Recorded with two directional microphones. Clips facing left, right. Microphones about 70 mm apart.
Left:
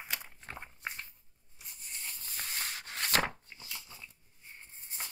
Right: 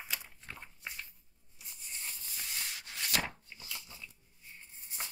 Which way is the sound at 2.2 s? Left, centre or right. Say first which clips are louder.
Left 5 dB; left.